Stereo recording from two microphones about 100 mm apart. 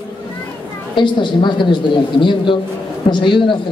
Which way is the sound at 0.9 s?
50° left (ahead or behind).